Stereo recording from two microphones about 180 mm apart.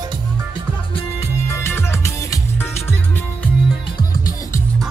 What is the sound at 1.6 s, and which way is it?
Music, 15° left (ahead or behind).